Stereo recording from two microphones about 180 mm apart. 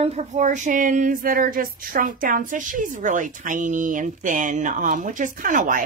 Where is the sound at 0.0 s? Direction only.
35° right (ahead or behind).